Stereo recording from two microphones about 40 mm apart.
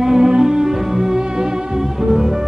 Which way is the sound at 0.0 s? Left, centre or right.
Centre.